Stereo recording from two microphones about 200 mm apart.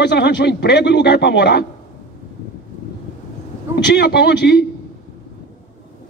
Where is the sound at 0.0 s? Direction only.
60° left (ahead or behind).